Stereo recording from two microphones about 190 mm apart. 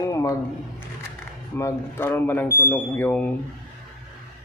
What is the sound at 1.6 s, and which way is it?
Speech, 15° left (ahead or behind).